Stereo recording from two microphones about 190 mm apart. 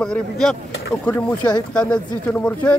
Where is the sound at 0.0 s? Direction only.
5° left (ahead or behind).